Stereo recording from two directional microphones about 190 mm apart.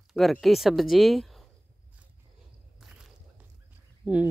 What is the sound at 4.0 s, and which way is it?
Speech, 5° right (ahead or behind).